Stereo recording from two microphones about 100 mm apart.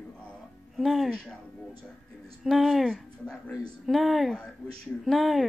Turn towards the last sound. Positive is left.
turn(degrees=0)  # may be behind; listen again after turning